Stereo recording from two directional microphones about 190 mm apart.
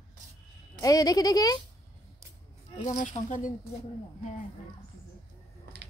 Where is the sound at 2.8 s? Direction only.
40° left (ahead or behind).